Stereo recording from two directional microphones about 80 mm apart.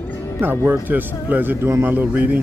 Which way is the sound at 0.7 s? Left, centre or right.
Right.